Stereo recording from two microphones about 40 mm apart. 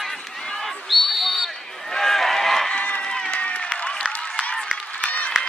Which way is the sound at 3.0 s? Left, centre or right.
Centre.